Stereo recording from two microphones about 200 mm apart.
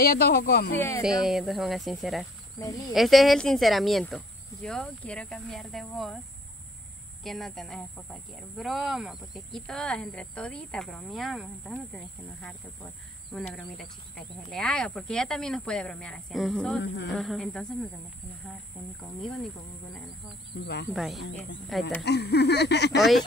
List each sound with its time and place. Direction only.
0.0 s speech: 50° left (ahead or behind)
0.7 s speech: 15° left (ahead or behind)
1.0 s speech: 5° right (ahead or behind)
7.2 s speech: centre (ahead or behind)
14.5 s speech: 5° left (ahead or behind)
16.8 s speech: 60° left (ahead or behind)
17.1 s speech: centre (ahead or behind)
19.2 s speech: 5° left (ahead or behind)
20.6 s speech: 55° left (ahead or behind)
20.9 s speech: centre (ahead or behind)
22.0 s speech: 55° left (ahead or behind)